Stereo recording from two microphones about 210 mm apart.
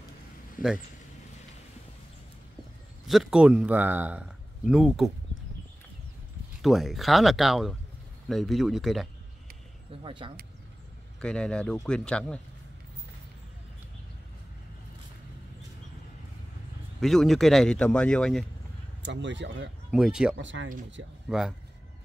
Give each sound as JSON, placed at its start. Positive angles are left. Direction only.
{"t": 0.6, "sound": "speech", "side_deg": 40}
{"t": 3.1, "sound": "a man's voice", "side_deg": 0}
{"t": 6.6, "sound": "a man's voice", "side_deg": 0}
{"t": 10.0, "sound": "speech", "side_deg": -25}
{"t": 11.1, "sound": "a man's voice", "side_deg": 5}
{"t": 17.0, "sound": "a man's voice", "side_deg": 0}
{"t": 19.0, "sound": "speech", "side_deg": -60}
{"t": 19.9, "sound": "a man's voice", "side_deg": -5}
{"t": 20.3, "sound": "speech", "side_deg": -65}
{"t": 21.3, "sound": "a man's voice", "side_deg": 0}